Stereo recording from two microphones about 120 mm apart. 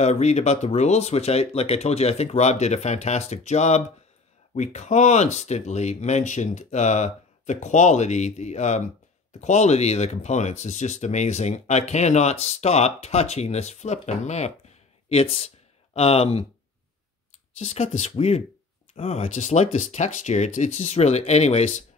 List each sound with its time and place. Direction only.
0.0 s speech: 70° left (ahead or behind)
15.0 s speech: 55° left (ahead or behind)
17.6 s speech: 65° left (ahead or behind)